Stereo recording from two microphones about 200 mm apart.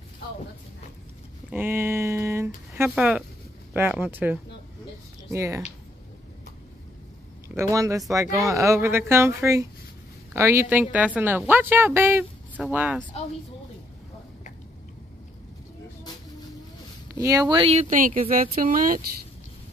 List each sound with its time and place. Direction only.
1.5 s a woman's voice: 10° right (ahead or behind)
7.4 s a woman's voice: 15° right (ahead or behind)
17.2 s speech: 15° right (ahead or behind); by 19.0 s 45° right (ahead or behind)